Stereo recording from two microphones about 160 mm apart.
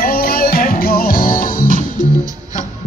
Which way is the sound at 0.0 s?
65° left (ahead or behind).